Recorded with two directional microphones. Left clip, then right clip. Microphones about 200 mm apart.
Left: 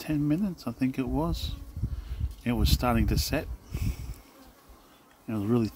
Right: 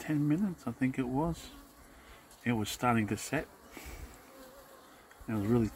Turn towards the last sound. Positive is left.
turn(degrees=15)  # may be behind; listen again after turning